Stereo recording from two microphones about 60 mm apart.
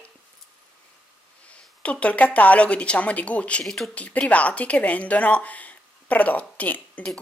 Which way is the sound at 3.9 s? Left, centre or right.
Left.